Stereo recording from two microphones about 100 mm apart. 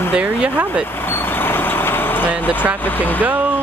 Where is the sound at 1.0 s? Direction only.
20° left (ahead or behind).